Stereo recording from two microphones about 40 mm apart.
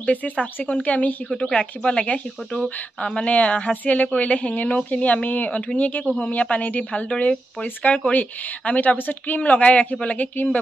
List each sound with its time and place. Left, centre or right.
0.0 s speech: left
6.0 s speech: left
8.9 s a woman's voice: left
9.7 s a woman's voice: left